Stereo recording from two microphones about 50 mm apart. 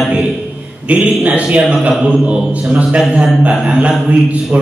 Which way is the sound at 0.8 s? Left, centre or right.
Right.